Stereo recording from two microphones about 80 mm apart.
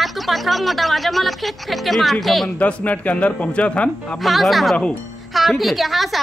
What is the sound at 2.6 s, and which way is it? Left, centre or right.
A man's voice, centre.